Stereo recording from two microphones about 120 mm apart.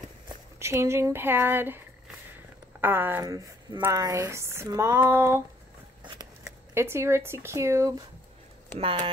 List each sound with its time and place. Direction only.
0.6 s speech: 20° right (ahead or behind)
2.8 s speech: 15° right (ahead or behind)
3.3 s speech: 30° right (ahead or behind)
6.7 s speech: 20° right (ahead or behind)
8.7 s speech: 45° right (ahead or behind)